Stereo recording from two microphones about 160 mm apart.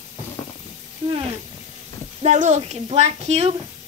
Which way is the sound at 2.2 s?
45° right (ahead or behind).